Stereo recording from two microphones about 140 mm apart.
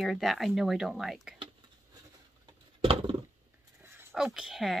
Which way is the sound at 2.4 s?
40° right (ahead or behind).